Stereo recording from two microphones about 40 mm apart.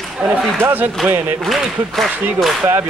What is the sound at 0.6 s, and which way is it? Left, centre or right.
Speech, right.